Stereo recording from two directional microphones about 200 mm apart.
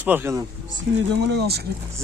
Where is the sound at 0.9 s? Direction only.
60° right (ahead or behind).